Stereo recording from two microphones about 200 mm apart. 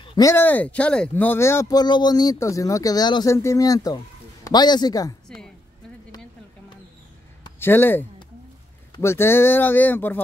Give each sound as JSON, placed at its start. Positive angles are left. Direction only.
{"t": 0.0, "sound": "speech", "side_deg": 20}
{"t": 7.5, "sound": "speech", "side_deg": 10}